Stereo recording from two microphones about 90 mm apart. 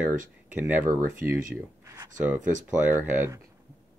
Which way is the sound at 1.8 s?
45° right (ahead or behind).